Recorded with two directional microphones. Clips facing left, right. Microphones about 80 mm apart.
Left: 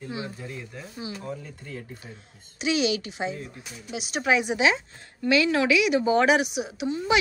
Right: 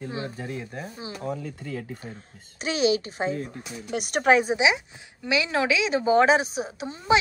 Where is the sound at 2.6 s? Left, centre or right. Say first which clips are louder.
Right 2 dB; right.